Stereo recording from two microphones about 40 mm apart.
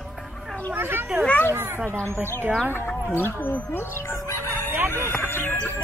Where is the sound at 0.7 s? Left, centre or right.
Right.